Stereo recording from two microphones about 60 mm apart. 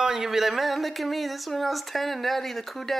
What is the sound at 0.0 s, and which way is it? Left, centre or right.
Speech, centre.